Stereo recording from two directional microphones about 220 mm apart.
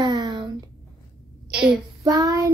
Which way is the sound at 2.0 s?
15° right (ahead or behind).